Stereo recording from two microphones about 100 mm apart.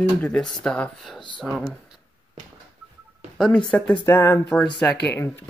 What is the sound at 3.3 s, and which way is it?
Speech, 5° left (ahead or behind).